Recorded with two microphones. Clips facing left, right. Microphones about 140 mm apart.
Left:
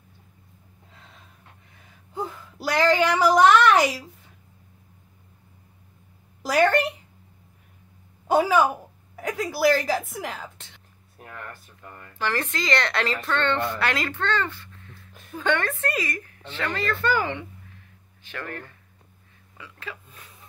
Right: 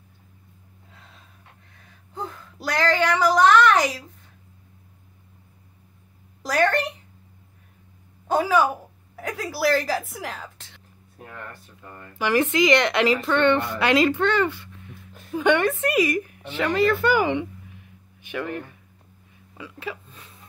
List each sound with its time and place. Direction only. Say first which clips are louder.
2.1 s speech: left 2 dB; 5° left (ahead or behind)
3.6 s a sound: even; 5° left (ahead or behind)
6.4 s speech: left 2 dB; 5° left (ahead or behind)
8.3 s a woman's voice: left 1 dB; centre (ahead or behind)
12.2 s speech: right 8 dB; 15° right (ahead or behind)